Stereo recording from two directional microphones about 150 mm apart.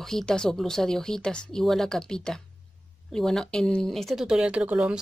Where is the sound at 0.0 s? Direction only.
5° left (ahead or behind).